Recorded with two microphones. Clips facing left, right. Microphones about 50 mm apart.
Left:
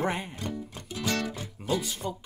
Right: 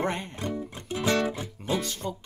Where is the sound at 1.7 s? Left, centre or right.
Centre.